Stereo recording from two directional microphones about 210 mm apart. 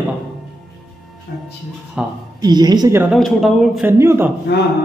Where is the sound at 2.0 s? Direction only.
5° right (ahead or behind).